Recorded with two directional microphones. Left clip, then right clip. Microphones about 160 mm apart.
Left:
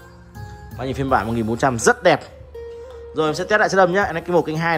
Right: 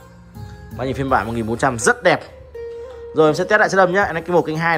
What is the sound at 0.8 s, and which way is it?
A man's voice, 15° left (ahead or behind).